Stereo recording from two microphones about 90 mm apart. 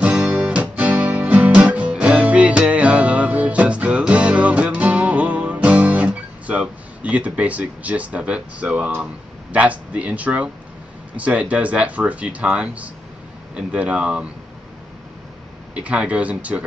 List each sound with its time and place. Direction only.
0.0 s guitar: 15° right (ahead or behind)
8.9 s speech: 15° right (ahead or behind)
15.7 s speech: 15° right (ahead or behind)